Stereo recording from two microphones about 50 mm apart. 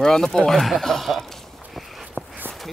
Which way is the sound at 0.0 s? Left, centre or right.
Centre.